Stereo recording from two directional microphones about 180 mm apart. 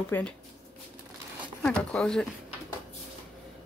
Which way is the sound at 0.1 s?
5° left (ahead or behind).